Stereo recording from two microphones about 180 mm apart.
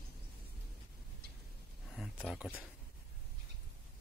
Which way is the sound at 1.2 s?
60° right (ahead or behind).